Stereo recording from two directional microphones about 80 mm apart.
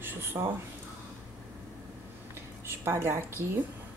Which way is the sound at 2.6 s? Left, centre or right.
Right.